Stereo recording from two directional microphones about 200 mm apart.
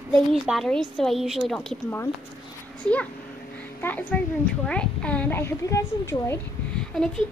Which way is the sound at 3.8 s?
10° left (ahead or behind).